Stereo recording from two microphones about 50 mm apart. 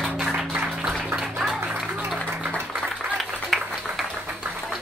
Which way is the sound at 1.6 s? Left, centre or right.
Right.